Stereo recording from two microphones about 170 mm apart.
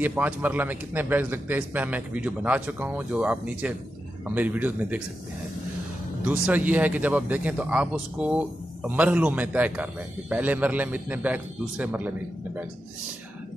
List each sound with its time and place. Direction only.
0.0 s speech: 10° right (ahead or behind)
6.2 s speech: 10° right (ahead or behind)